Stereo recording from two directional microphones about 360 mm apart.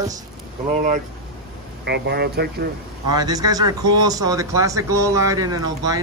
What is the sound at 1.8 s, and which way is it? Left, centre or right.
Speech, right.